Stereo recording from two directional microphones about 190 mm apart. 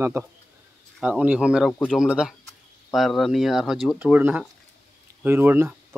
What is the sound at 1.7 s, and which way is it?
Speech, 5° left (ahead or behind).